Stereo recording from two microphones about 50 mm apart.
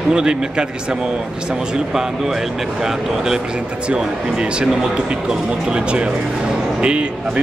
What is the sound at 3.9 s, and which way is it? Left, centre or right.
A man's voice, centre.